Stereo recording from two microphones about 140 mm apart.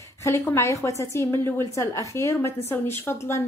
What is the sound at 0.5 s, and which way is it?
A woman's voice, 20° left (ahead or behind).